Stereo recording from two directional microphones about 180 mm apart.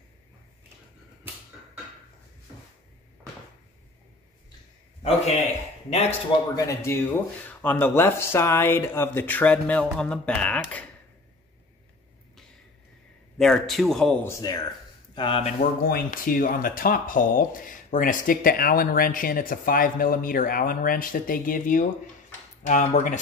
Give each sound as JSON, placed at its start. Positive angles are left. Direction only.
{"t": 5.0, "sound": "a man's voice", "side_deg": 35}
{"t": 6.5, "sound": "speech", "side_deg": 15}
{"t": 13.4, "sound": "a man's voice", "side_deg": 0}
{"t": 14.2, "sound": "speech", "side_deg": 20}
{"t": 15.8, "sound": "speech", "side_deg": 50}